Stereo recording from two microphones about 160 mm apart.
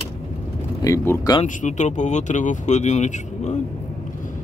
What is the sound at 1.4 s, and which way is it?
Speech, 50° left (ahead or behind).